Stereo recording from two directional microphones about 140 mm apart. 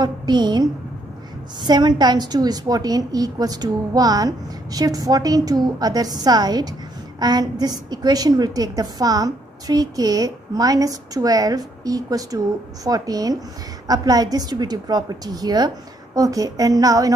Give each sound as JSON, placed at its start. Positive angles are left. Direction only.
{"t": 0.0, "sound": "a woman's voice", "side_deg": -30}